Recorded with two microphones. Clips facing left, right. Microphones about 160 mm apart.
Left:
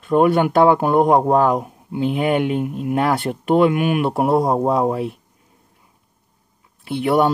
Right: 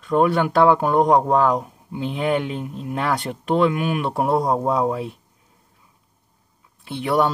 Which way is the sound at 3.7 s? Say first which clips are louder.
Left 4 dB; 60° left (ahead or behind).